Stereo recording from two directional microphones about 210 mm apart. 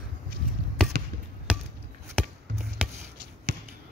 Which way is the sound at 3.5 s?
60° right (ahead or behind).